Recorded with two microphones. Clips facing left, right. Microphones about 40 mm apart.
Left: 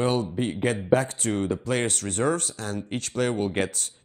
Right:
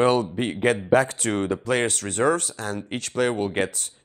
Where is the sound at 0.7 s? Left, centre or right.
Right.